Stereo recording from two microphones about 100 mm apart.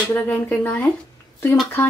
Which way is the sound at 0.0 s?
15° left (ahead or behind).